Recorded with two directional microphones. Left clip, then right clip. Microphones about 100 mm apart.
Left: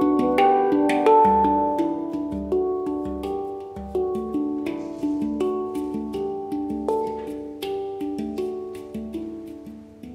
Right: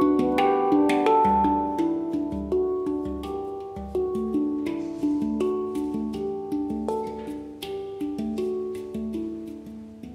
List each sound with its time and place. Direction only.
0.0 s music: 20° right (ahead or behind)